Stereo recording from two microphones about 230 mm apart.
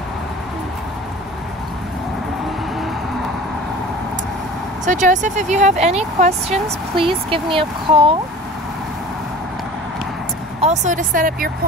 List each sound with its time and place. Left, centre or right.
4.8 s speech: right
10.6 s speech: right